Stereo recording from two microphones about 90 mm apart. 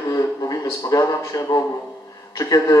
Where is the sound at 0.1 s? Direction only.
40° left (ahead or behind).